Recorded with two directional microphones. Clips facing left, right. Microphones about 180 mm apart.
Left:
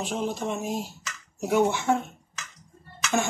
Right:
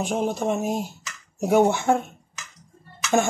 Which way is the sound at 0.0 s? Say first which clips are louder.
Right 5 dB; 50° right (ahead or behind).